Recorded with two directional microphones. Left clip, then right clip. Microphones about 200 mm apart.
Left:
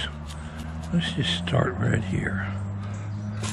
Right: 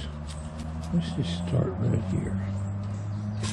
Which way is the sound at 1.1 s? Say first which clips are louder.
Left 7 dB; 30° left (ahead or behind).